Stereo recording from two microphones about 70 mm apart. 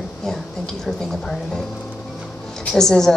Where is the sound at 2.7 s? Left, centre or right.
Centre.